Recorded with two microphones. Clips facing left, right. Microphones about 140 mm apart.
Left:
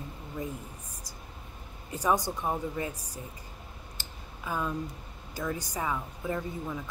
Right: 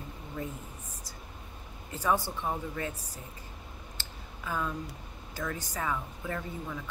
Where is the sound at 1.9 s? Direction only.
15° left (ahead or behind).